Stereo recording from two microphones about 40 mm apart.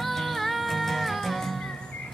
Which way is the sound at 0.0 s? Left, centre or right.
Centre.